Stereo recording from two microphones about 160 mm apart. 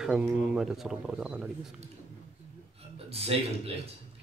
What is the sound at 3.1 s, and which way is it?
Speech, 40° right (ahead or behind).